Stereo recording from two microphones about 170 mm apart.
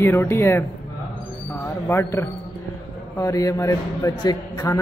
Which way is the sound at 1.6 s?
15° left (ahead or behind).